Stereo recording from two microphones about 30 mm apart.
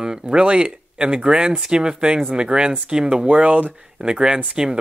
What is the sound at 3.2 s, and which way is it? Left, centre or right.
Speech, right.